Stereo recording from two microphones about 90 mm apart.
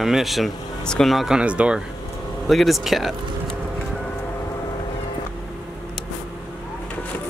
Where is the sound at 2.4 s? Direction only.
Centre (ahead or behind).